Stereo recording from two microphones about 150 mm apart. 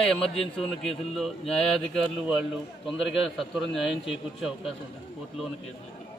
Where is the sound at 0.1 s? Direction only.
5° left (ahead or behind).